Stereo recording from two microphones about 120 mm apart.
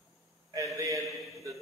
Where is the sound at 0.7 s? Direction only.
25° right (ahead or behind).